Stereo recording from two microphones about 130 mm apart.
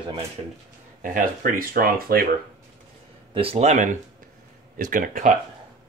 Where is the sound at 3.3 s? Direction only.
45° right (ahead or behind); by 4.3 s 70° right (ahead or behind).